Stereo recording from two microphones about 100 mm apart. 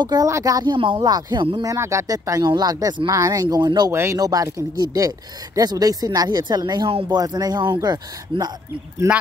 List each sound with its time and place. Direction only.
0.0 s speech: 40° right (ahead or behind)
1.6 s speech: 30° right (ahead or behind)
3.9 s speech: 25° right (ahead or behind)
4.2 s speech: 35° right (ahead or behind)
6.9 s speech: 60° right (ahead or behind)
7.2 s speech: 40° right (ahead or behind)